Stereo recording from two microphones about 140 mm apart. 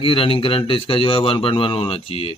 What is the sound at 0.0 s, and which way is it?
Mantra, 40° left (ahead or behind).